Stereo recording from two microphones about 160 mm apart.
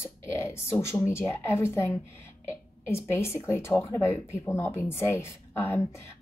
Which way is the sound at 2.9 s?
15° left (ahead or behind).